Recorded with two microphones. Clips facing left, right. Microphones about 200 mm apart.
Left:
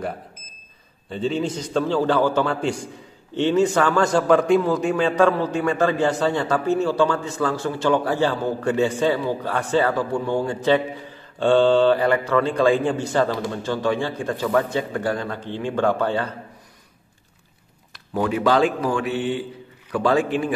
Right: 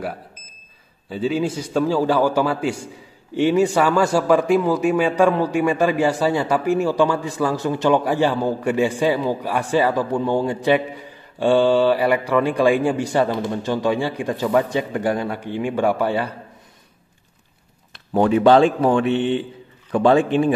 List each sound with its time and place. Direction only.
1.0 s a man's voice: 5° right (ahead or behind)
17.9 s speech: 25° right (ahead or behind)